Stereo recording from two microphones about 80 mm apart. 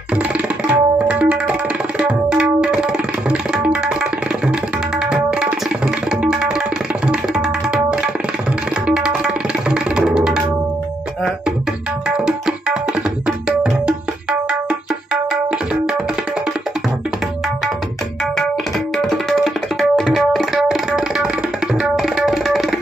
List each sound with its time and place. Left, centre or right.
0.7 s tabla: centre
7.1 s tabla: centre
12.3 s tabla: centre
19.0 s tabla: centre